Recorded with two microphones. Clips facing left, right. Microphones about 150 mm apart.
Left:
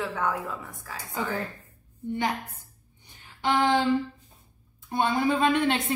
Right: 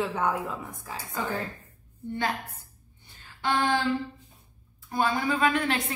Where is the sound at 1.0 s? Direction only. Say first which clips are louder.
Left 1 dB; 20° left (ahead or behind).